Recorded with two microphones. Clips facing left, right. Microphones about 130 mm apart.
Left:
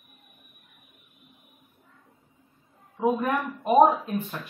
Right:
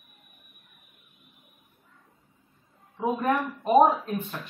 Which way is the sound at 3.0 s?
5° left (ahead or behind).